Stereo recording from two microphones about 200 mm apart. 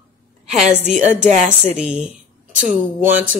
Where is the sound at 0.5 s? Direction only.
Centre (ahead or behind).